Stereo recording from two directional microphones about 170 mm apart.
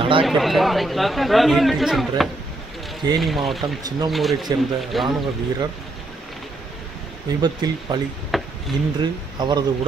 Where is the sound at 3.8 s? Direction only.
20° right (ahead or behind).